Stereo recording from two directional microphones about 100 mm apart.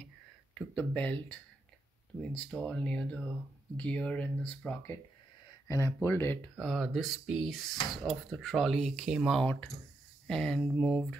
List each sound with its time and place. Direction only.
0.6 s speech: 15° left (ahead or behind)
5.7 s speech: 30° left (ahead or behind)
6.8 s speech: 5° right (ahead or behind)
10.2 s speech: 5° left (ahead or behind)